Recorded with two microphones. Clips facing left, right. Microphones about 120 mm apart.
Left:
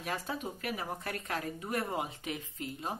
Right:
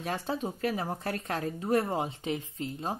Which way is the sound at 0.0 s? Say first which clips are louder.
Right 5 dB; 30° right (ahead or behind).